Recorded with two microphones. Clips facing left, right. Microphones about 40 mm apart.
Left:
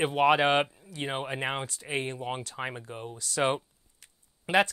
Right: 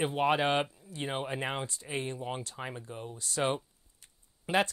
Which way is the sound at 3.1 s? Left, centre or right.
Left.